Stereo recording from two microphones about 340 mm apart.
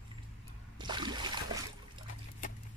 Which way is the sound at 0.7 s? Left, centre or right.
Centre.